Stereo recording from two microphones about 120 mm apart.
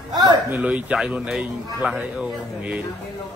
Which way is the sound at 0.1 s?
35° right (ahead or behind).